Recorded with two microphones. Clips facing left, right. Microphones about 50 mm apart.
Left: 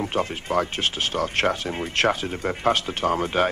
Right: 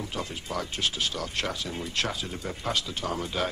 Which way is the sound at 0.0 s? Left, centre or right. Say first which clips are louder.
Left 9 dB; left.